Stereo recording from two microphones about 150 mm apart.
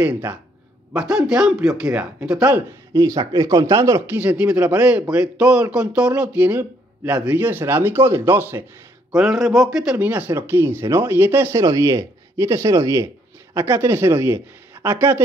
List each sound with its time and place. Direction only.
0.0 s speech: 10° right (ahead or behind)
2.9 s speech: 20° right (ahead or behind)
9.1 s speech: centre (ahead or behind)